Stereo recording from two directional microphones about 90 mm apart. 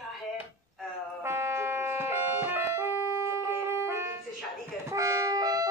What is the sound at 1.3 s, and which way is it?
Music, 30° right (ahead or behind).